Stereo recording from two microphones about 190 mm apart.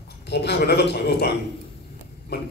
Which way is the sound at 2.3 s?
60° left (ahead or behind).